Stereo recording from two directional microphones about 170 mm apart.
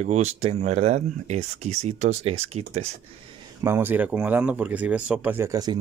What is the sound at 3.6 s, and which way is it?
Speech, 15° right (ahead or behind).